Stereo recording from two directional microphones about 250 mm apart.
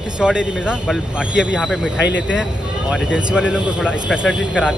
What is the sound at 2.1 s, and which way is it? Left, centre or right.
Speech, left.